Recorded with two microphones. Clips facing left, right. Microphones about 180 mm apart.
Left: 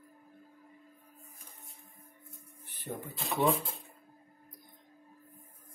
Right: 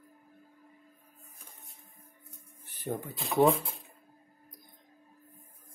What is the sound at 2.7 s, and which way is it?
Printer, 45° right (ahead or behind).